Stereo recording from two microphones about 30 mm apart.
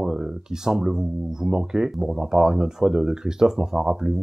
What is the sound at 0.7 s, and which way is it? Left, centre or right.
Speech, centre.